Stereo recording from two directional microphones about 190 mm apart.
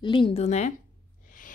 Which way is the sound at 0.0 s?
25° left (ahead or behind).